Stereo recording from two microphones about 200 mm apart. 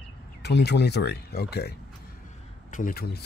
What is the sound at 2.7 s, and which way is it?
Speech, 45° left (ahead or behind).